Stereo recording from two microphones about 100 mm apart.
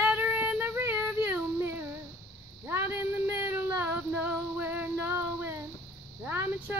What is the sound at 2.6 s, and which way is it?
Female singing, 20° right (ahead or behind).